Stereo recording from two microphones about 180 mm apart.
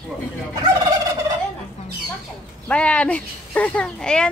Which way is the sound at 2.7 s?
5° left (ahead or behind).